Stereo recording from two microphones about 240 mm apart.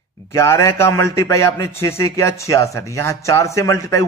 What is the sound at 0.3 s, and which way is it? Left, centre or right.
A man's voice, centre.